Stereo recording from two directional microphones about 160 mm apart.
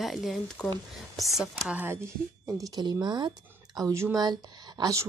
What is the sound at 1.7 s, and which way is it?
Speech, 10° right (ahead or behind).